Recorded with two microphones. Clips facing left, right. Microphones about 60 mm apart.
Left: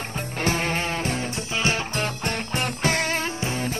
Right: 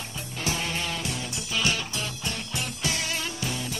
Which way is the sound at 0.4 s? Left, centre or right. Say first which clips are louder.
Left 5 dB; left.